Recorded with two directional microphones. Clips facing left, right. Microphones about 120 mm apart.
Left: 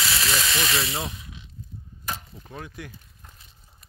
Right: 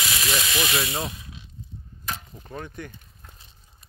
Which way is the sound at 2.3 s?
Centre (ahead or behind).